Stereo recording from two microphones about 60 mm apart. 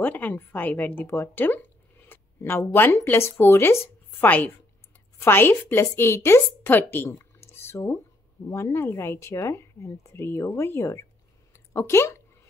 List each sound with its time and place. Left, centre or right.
0.0 s a woman's voice: left
7.1 s drip: left
8.5 s speech: left